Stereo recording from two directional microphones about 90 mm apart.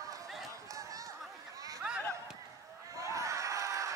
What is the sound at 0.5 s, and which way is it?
Run, 40° right (ahead or behind).